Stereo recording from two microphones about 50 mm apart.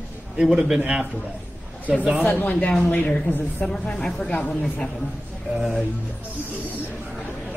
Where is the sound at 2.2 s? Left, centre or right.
Left.